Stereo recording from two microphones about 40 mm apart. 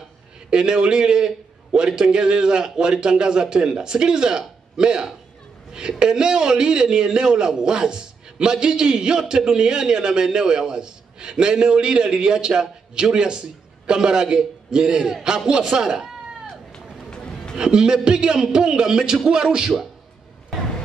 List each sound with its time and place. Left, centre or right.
0.5 s a man's voice: right
16.7 s run: centre
17.6 s a man's voice: right